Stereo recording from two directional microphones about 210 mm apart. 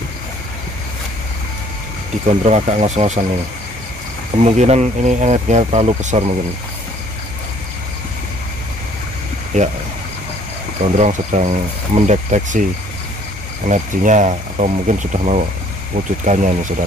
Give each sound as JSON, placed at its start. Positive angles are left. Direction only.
{"t": 2.2, "sound": "speech", "side_deg": -35}
{"t": 4.4, "sound": "speech", "side_deg": -30}
{"t": 9.5, "sound": "speech", "side_deg": -35}
{"t": 11.0, "sound": "speech", "side_deg": -35}
{"t": 13.7, "sound": "speech", "side_deg": -35}